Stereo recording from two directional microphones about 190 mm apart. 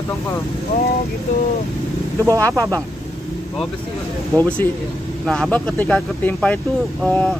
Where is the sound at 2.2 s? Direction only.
15° right (ahead or behind).